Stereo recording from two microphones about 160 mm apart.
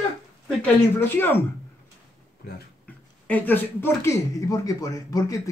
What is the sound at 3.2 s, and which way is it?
Speech, 10° left (ahead or behind).